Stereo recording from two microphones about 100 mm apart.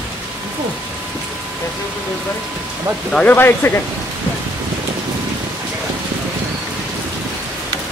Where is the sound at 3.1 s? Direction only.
15° left (ahead or behind).